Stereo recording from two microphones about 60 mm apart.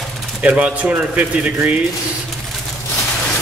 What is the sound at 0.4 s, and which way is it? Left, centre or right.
A man's voice, right.